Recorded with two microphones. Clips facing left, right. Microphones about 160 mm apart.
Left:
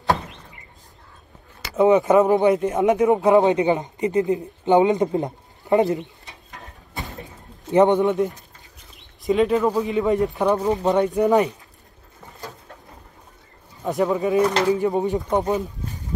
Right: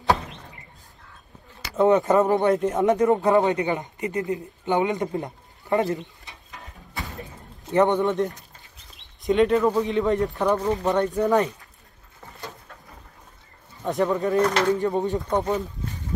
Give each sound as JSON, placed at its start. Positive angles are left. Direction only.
{"t": 1.8, "sound": "a man's voice", "side_deg": 0}
{"t": 3.1, "sound": "speech", "side_deg": 15}
{"t": 7.7, "sound": "speech", "side_deg": 20}
{"t": 9.2, "sound": "a man's voice", "side_deg": 0}
{"t": 10.2, "sound": "speech", "side_deg": 15}
{"t": 14.1, "sound": "a man's voice", "side_deg": 0}